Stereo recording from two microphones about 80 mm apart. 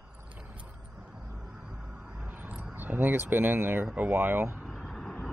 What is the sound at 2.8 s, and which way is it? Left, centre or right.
Speech, right.